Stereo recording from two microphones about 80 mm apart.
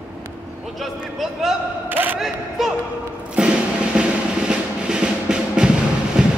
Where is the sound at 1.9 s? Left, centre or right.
Right.